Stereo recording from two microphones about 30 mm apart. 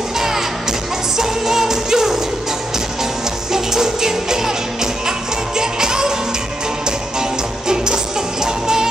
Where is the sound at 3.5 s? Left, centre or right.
Centre.